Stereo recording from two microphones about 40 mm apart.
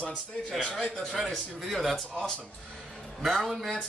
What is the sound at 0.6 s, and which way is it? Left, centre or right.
Speech, left.